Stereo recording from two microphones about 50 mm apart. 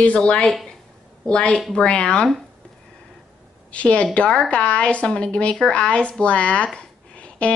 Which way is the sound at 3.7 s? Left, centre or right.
Left.